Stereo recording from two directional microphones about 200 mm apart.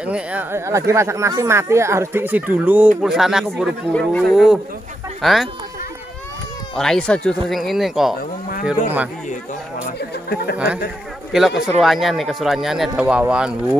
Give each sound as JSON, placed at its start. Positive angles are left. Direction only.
{"t": 0.0, "sound": "speech", "side_deg": -5}
{"t": 6.7, "sound": "speech", "side_deg": 5}
{"t": 8.2, "sound": "speech", "side_deg": 45}
{"t": 9.9, "sound": "speech", "side_deg": 50}
{"t": 11.3, "sound": "speech", "side_deg": 0}